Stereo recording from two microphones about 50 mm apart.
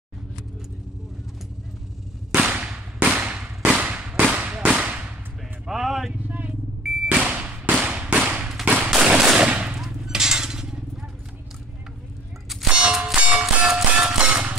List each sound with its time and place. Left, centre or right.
2.3 s whip: right
3.2 s firecracker: right
4.7 s whip: right
5.7 s vehicle: centre
6.2 s vehicle: right
7.2 s a sound: right
7.8 s firecracker: right
8.3 s thump: right
8.6 s gunshot: right
8.9 s a sound: centre
9.4 s gunshot: right
10.0 s a sound: centre
12.6 s clang: right
13.0 s music: right